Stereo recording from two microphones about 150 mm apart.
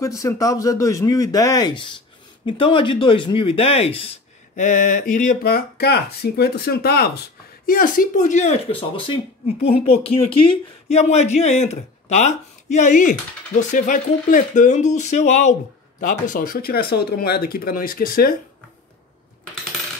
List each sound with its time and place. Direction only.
0.0 s a man's voice: 20° left (ahead or behind); by 4.2 s 40° left (ahead or behind)
4.6 s speech: 60° left (ahead or behind); by 7.1 s 90° left
7.6 s speech: 70° left (ahead or behind); by 15.5 s 50° left (ahead or behind)
16.0 s speech: 65° left (ahead or behind)